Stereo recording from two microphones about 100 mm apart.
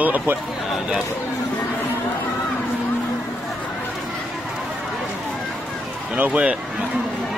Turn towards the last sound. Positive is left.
turn(degrees=-15)  # may be behind; listen again after turning